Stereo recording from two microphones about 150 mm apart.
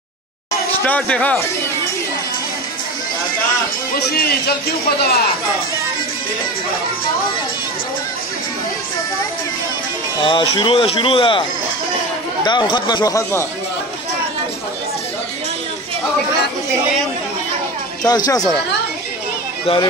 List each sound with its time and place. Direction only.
0.8 s speech: 10° left (ahead or behind)
3.9 s speech: 80° left
10.2 s speech: 35° left (ahead or behind)
12.4 s speech: 30° left (ahead or behind)
18.0 s speech: 25° left (ahead or behind)
19.6 s speech: 35° left (ahead or behind)